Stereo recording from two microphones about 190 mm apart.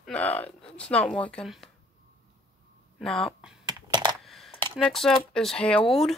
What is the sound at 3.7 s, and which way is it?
Computer keyboard, 20° right (ahead or behind).